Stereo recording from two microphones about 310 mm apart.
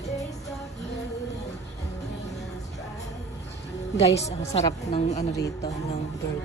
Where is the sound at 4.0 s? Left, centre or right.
Left.